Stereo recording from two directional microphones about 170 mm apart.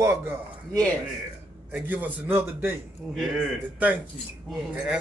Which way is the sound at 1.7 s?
10° right (ahead or behind).